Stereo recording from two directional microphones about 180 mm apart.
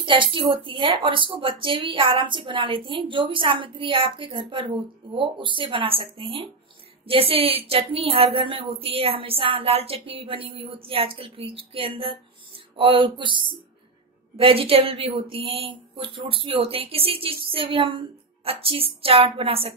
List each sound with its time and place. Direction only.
0.0 s a woman's voice: 30° right (ahead or behind)